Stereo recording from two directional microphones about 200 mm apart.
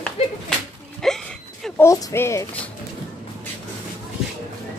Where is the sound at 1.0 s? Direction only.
Centre (ahead or behind).